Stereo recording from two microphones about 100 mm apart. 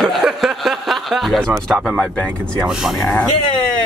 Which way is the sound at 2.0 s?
10° left (ahead or behind).